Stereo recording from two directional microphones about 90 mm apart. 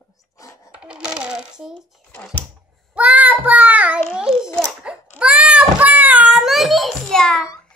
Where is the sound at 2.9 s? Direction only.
15° right (ahead or behind).